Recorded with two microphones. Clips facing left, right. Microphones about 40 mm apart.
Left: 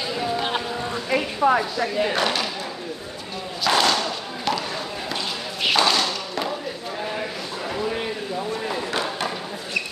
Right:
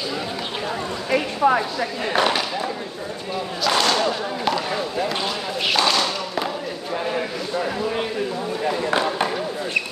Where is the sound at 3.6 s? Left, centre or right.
Centre.